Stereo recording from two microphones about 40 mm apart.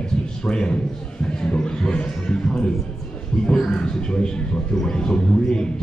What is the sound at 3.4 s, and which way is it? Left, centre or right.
A man's voice, left.